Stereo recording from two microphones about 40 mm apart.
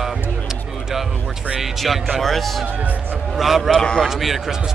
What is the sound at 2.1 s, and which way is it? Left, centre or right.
Speech, centre.